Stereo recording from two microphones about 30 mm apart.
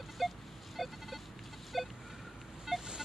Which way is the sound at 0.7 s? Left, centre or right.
Centre.